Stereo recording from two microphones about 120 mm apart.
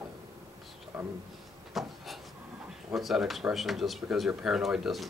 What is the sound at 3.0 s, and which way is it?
Speech, centre (ahead or behind).